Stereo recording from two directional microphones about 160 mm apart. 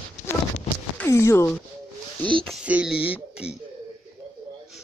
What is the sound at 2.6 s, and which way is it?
Speech, 5° right (ahead or behind).